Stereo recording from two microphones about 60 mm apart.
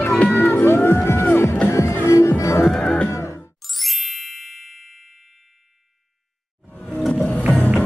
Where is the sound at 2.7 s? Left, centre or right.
Centre.